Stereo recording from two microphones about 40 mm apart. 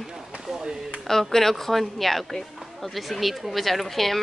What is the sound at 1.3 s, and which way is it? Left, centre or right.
Speech, centre.